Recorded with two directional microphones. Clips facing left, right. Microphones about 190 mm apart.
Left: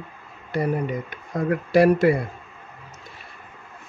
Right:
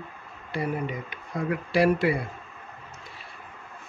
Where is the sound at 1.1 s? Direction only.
45° left (ahead or behind).